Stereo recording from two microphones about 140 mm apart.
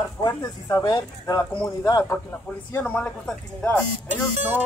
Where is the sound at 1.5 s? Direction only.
15° left (ahead or behind).